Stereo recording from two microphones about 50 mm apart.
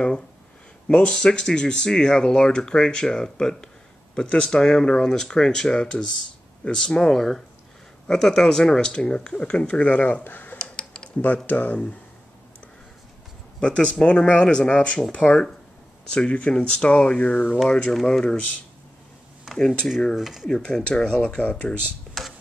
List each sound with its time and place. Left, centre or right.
0.8 s speech: centre; by 10.6 s left
10.6 s typing: centre
11.3 s speech: left
13.6 s speech: left
17.9 s speech: centre
18.2 s speech: left
20.2 s speech: centre
20.4 s speech: centre
22.1 s a sound: centre